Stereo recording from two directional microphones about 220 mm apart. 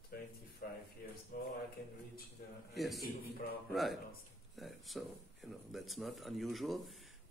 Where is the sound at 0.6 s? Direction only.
45° left (ahead or behind).